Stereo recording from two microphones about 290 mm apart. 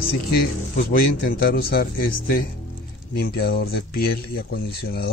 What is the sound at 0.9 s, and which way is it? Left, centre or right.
Speech, left.